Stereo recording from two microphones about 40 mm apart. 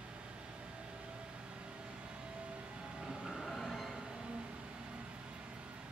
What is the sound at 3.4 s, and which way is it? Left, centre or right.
Train, centre.